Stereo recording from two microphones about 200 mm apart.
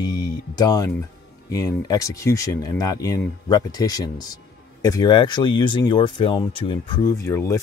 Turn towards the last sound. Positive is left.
turn(degrees=15)  # may be behind; listen again after turning